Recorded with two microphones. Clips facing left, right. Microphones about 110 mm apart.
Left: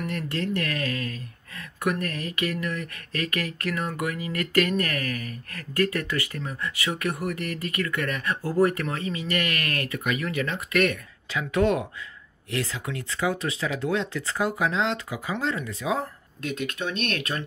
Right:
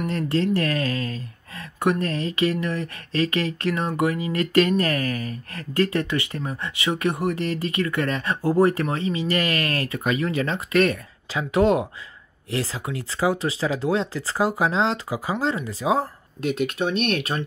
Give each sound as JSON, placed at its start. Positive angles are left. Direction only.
{"t": 0.0, "sound": "speech", "side_deg": -30}